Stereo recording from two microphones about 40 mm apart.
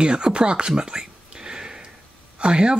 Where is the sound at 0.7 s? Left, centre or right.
Centre.